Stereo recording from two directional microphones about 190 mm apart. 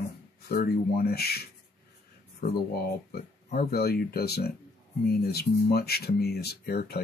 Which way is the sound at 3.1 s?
55° left (ahead or behind).